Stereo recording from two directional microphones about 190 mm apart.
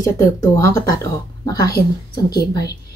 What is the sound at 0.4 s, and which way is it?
Speech, 15° left (ahead or behind).